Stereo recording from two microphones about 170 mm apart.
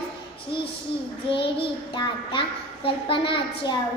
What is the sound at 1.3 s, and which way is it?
Child singing, 30° left (ahead or behind).